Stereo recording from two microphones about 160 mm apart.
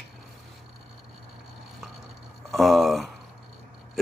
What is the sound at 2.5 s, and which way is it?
Speech, centre (ahead or behind).